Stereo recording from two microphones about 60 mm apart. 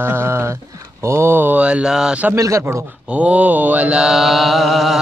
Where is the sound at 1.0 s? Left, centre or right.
Right.